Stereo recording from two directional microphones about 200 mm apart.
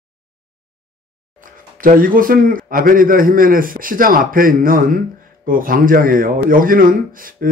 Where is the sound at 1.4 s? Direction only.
45° right (ahead or behind).